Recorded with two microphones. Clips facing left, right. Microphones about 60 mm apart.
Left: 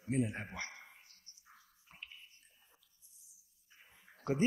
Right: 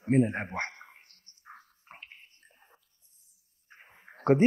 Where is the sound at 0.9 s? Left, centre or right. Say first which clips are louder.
Right 5 dB; right.